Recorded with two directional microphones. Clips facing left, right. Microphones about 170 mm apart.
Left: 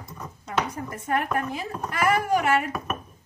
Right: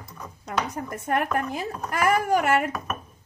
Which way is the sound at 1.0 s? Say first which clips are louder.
Right 1 dB; 50° right (ahead or behind).